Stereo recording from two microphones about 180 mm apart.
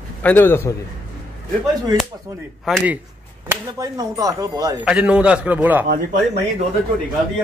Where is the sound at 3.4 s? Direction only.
20° right (ahead or behind).